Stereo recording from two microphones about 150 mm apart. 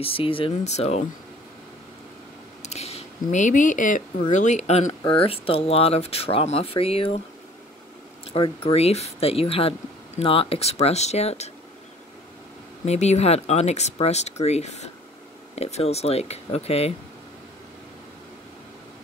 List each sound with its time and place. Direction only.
0.0 s speech: 35° left (ahead or behind)
2.6 s speech: 45° left (ahead or behind)
8.3 s speech: 40° left (ahead or behind)
12.8 s speech: 50° left (ahead or behind)